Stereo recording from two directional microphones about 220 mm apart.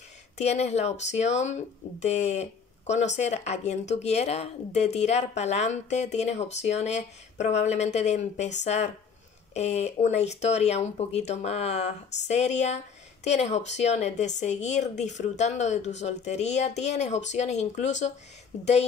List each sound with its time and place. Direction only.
0.4 s speech: 30° left (ahead or behind)